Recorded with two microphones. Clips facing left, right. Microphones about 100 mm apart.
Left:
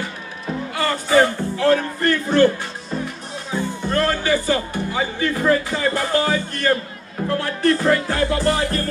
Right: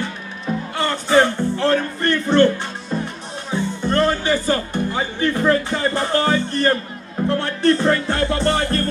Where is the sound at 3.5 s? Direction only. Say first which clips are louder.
Right 2 dB; 25° right (ahead or behind).